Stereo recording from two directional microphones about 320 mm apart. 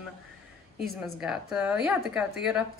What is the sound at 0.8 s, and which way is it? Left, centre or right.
A woman's voice, centre.